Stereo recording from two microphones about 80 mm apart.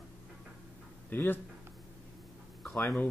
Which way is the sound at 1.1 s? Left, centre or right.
Left.